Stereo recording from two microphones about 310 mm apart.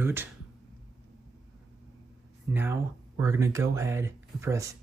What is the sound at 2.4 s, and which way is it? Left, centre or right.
Speech, centre.